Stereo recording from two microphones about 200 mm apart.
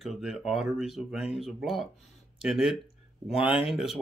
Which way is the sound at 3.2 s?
30° left (ahead or behind).